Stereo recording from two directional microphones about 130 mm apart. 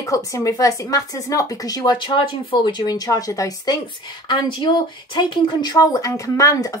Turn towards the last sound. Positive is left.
turn(degrees=25)  # may be behind; listen again after turning